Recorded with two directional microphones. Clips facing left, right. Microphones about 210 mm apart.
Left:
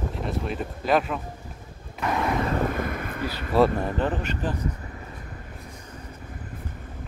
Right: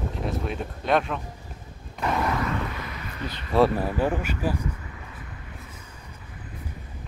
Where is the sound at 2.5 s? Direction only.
45° left (ahead or behind).